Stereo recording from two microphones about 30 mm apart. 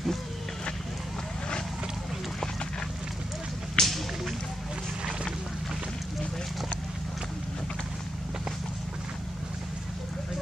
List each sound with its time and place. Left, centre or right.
3.8 s whip: left